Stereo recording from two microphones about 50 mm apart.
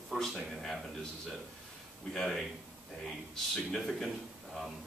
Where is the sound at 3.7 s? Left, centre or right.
Centre.